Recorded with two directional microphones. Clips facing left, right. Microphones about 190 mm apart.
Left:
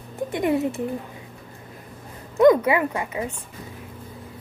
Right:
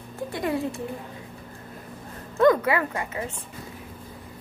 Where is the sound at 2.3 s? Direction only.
20° left (ahead or behind).